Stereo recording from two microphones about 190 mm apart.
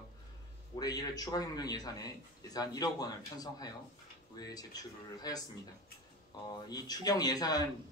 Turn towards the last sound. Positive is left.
turn(degrees=20)  # may be behind; listen again after turning